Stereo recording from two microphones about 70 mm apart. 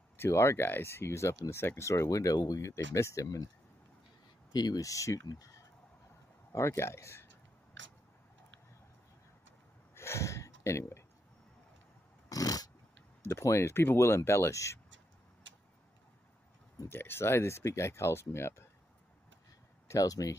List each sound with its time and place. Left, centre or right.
0.2 s speech: left
4.5 s speech: left
6.5 s speech: left
9.9 s a sound: left
12.3 s a sound: left
13.2 s speech: left
16.9 s speech: left
19.9 s speech: left